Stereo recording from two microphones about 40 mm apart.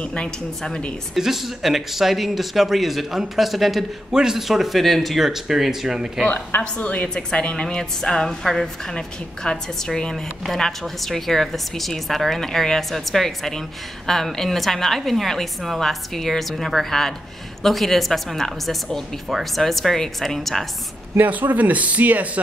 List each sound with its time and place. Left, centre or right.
0.0 s a woman's voice: left
1.1 s a woman's voice: centre
4.1 s speech: centre
6.8 s a woman's voice: left
7.2 s a woman's voice: left
10.5 s a woman's voice: centre
21.3 s speech: right